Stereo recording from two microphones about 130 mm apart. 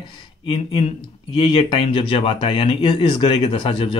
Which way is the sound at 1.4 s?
45° left (ahead or behind).